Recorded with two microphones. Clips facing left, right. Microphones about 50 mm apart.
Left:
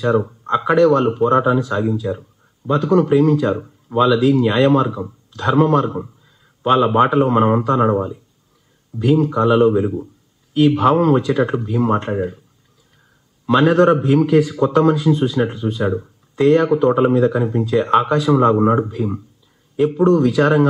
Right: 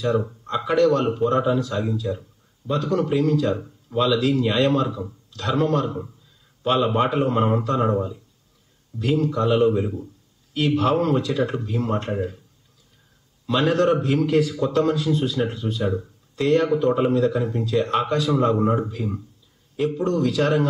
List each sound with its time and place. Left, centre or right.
0.2 s a sound: left
0.7 s speech: left
13.5 s a man's voice: left